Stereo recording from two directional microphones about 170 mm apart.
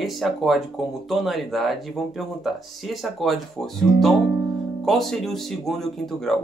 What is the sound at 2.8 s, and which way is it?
Speech, centre (ahead or behind).